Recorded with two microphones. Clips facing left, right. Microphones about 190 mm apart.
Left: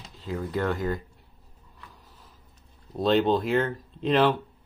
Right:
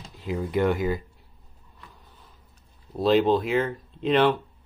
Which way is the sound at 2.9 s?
Centre (ahead or behind).